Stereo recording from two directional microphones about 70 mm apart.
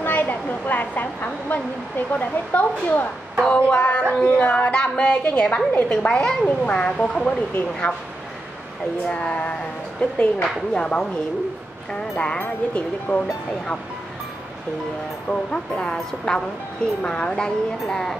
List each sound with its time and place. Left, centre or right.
0.0 s a sound: left
3.4 s speech: centre
9.0 s speech: centre
15.2 s speech: centre